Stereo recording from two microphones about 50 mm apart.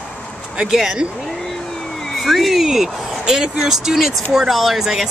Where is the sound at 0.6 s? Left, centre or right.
Centre.